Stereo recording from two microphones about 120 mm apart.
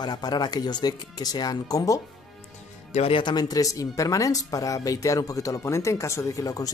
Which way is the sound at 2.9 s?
60° left (ahead or behind).